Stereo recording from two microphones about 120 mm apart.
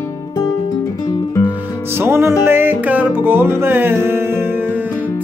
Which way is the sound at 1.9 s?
20° right (ahead or behind).